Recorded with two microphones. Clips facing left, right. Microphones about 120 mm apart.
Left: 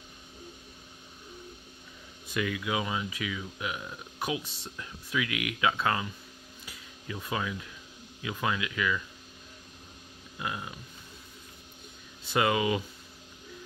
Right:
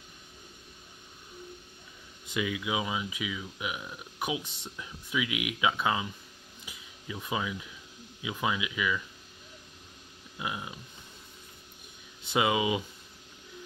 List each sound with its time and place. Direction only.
2.2 s speech: 15° right (ahead or behind)
6.6 s a sound: 15° right (ahead or behind)
8.2 s speech: 15° right (ahead or behind)
10.4 s speech: 15° right (ahead or behind)
12.2 s speech: 20° right (ahead or behind)